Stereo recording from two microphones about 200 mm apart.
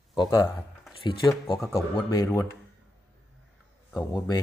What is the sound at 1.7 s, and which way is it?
Speech, 15° left (ahead or behind).